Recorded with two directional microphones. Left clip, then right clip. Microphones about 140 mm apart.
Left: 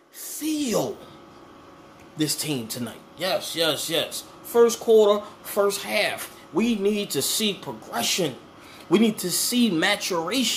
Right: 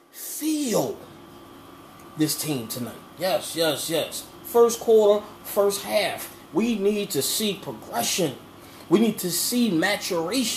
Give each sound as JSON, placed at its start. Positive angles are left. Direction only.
{"t": 0.3, "sound": "speech", "side_deg": 20}
{"t": 2.1, "sound": "speech", "side_deg": 15}